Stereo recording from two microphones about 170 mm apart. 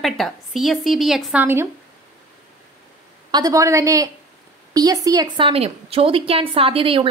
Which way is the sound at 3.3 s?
20° right (ahead or behind).